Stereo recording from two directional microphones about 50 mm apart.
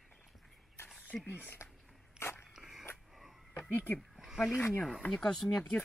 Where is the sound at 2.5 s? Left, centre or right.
Centre.